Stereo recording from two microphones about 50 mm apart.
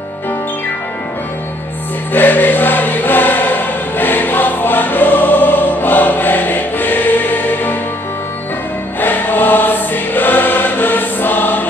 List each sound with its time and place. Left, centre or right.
2.1 s choir: left
9.0 s choir: left